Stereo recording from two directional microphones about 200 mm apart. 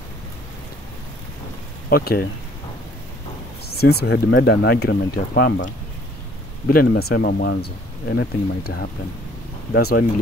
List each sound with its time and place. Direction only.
1.9 s speech: 50° left (ahead or behind)
3.7 s speech: 50° left (ahead or behind)
6.7 s speech: 50° left (ahead or behind)